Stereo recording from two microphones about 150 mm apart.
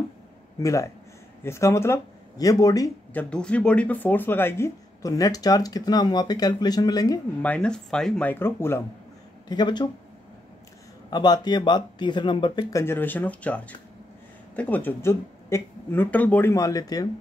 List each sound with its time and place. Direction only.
0.6 s speech: 20° left (ahead or behind)
3.1 s speech: 10° left (ahead or behind); by 7.2 s 25° left (ahead or behind)
7.4 s speech: 10° left (ahead or behind)
9.5 s speech: 30° left (ahead or behind)
11.1 s speech: 25° left (ahead or behind)
12.7 s speech: 15° left (ahead or behind)